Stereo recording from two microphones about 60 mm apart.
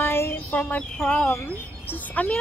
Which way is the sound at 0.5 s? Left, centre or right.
Left.